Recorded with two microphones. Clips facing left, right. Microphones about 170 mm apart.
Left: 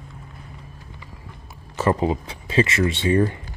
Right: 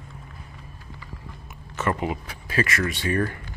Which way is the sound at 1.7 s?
30° left (ahead or behind).